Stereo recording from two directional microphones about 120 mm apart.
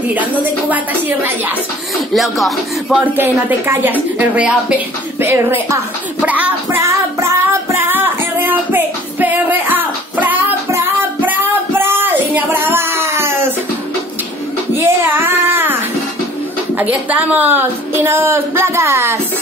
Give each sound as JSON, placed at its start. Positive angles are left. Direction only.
{"t": 0.1, "sound": "a woman's voice", "side_deg": -15}
{"t": 2.1, "sound": "speech", "side_deg": 0}
{"t": 3.0, "sound": "a woman's voice", "side_deg": -15}
{"t": 6.2, "sound": "music", "side_deg": -10}
{"t": 14.8, "sound": "child singing", "side_deg": -20}
{"t": 16.7, "sound": "a woman's voice", "side_deg": -15}